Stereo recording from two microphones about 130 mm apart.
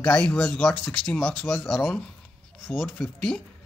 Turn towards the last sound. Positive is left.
turn(degrees=5)  # may be behind; listen again after turning